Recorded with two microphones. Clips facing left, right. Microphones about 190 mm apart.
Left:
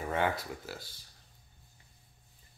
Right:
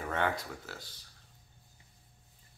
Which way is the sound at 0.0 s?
10° left (ahead or behind).